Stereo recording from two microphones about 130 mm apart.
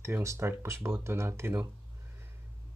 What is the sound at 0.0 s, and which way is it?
Speech, 25° right (ahead or behind).